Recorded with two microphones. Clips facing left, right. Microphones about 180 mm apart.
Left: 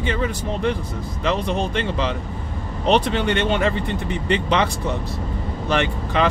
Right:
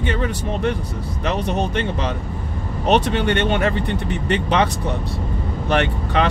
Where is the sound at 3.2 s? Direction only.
55° right (ahead or behind).